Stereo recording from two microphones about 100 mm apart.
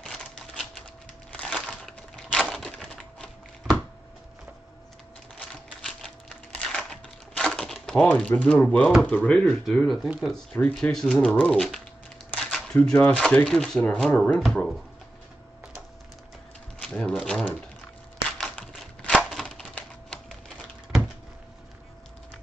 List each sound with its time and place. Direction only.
0.0 s typewriter: 5° left (ahead or behind)
1.3 s crushing: 10° left (ahead or behind)
5.9 s a sound: 5° left (ahead or behind)
10.2 s speech: 10° left (ahead or behind)
16.8 s a sound: 5° left (ahead or behind)
18.4 s typing: 10° left (ahead or behind)